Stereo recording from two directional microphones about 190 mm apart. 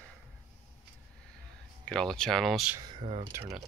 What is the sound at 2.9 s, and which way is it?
Speech, 30° right (ahead or behind).